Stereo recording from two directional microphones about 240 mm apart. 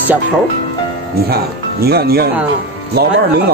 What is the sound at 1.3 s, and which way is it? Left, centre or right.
Speech, right.